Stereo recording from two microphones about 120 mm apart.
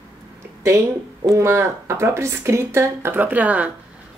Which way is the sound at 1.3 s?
25° right (ahead or behind).